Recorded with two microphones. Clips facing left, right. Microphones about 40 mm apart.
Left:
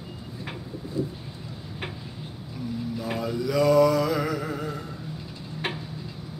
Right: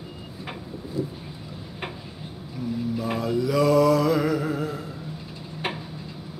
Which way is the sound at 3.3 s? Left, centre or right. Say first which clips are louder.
Even; centre.